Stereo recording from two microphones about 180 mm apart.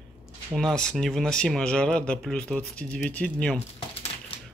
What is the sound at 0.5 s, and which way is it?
Speech, 5° left (ahead or behind).